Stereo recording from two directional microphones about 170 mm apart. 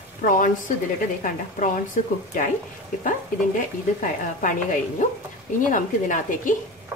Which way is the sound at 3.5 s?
50° left (ahead or behind).